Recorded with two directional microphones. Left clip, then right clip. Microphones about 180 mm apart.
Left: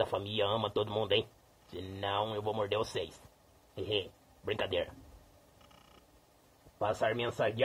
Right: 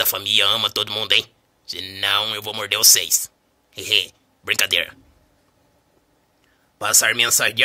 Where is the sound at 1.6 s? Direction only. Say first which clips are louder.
Right 15 dB; 5° right (ahead or behind).